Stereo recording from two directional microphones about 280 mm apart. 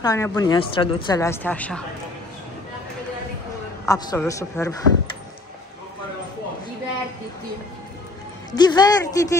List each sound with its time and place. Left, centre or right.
0.0 s a woman's voice: centre
3.8 s a woman's voice: centre
8.5 s a woman's voice: centre